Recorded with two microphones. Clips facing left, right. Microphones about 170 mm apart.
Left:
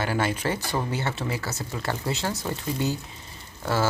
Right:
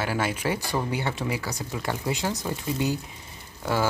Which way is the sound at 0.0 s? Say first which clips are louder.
Left 1 dB; 10° right (ahead or behind).